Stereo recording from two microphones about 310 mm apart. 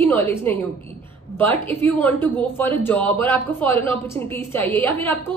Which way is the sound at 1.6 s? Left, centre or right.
Centre.